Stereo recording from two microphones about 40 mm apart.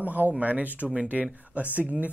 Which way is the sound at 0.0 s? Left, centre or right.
Right.